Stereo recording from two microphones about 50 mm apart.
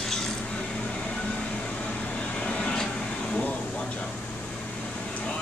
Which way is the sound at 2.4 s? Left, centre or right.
Left.